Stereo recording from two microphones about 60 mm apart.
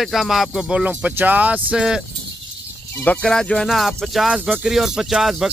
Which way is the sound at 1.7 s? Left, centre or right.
Centre.